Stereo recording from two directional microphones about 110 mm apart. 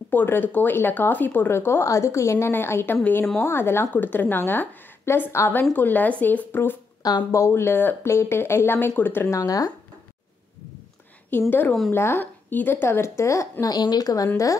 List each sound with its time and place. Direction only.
0.1 s a woman's voice: 15° left (ahead or behind)
7.0 s speech: 40° left (ahead or behind)
7.2 s speech: 25° left (ahead or behind)
11.3 s speech: 20° left (ahead or behind)